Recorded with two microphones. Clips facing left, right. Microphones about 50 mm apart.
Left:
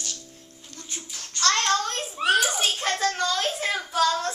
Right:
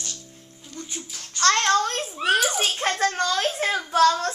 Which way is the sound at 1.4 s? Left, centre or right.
Right.